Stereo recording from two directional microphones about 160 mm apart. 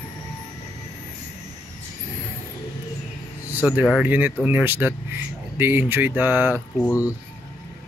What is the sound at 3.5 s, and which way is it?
Speech, 10° right (ahead or behind).